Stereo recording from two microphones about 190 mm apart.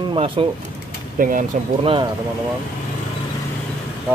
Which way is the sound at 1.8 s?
25° right (ahead or behind).